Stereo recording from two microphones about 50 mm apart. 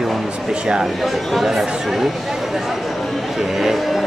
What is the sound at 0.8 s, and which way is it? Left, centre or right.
Speech, centre.